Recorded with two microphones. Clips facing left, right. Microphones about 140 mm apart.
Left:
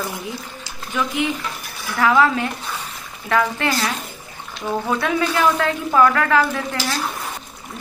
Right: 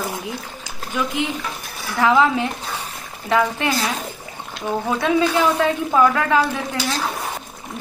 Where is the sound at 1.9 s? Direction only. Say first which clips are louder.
Even; 15° right (ahead or behind).